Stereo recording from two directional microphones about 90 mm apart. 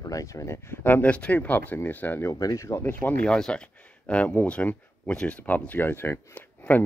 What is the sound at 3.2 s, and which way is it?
Speech, 10° left (ahead or behind).